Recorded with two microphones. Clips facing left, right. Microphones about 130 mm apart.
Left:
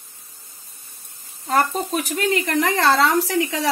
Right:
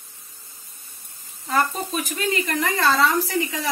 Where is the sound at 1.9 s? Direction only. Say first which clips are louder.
Left 4 dB; 60° left (ahead or behind); by 3.7 s 80° left.